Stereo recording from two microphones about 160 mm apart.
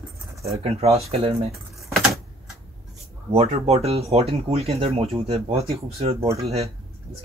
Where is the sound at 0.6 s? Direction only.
40° right (ahead or behind).